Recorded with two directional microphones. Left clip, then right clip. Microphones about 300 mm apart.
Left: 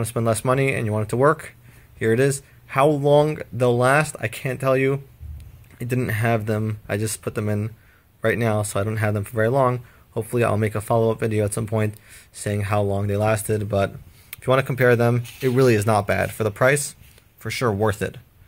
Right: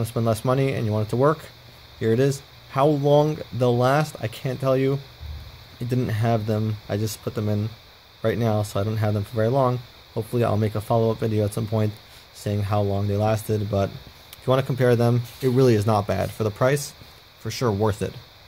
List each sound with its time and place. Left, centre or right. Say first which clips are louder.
0.0 s speech: left 2 dB; centre